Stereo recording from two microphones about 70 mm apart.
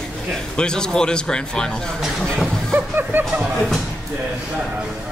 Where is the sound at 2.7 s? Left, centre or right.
Right.